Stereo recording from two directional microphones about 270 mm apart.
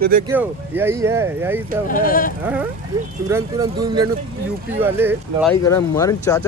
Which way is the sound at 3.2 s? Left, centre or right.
Centre.